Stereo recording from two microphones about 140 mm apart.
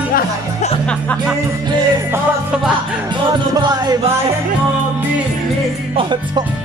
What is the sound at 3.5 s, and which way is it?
Music, 30° right (ahead or behind).